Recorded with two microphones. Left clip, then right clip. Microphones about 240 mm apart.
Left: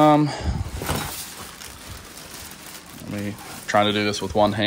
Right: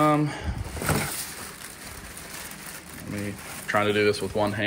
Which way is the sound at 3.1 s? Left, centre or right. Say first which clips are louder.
Left 3 dB; centre.